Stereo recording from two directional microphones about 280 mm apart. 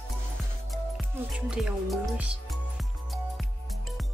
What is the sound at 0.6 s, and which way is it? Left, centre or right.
Music, centre.